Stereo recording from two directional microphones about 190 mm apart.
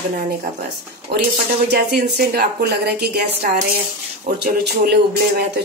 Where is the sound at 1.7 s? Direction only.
55° right (ahead or behind).